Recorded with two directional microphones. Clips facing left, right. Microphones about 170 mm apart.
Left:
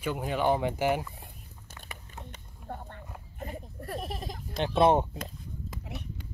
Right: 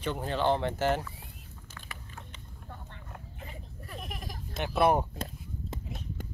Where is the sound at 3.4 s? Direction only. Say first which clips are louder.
Left 6 dB; 45° left (ahead or behind); by 4.4 s 30° left (ahead or behind).